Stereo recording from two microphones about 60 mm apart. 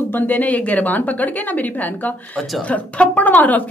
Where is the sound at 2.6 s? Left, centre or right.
Left.